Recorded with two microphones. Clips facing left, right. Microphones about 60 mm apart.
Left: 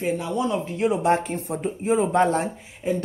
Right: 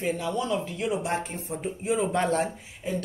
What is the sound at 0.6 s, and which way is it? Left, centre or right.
Speech, left.